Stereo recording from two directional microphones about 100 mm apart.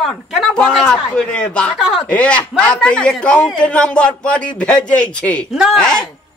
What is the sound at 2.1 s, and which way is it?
A man's voice, 10° left (ahead or behind).